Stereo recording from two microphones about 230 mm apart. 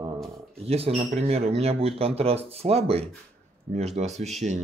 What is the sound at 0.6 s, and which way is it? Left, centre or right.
Speech, right.